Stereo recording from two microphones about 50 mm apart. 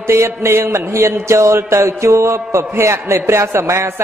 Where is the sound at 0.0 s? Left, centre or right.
Right.